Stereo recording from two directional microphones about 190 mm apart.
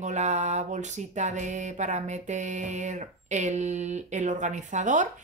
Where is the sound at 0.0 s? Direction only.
40° right (ahead or behind).